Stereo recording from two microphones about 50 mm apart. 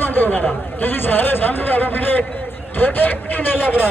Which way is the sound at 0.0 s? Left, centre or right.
Left.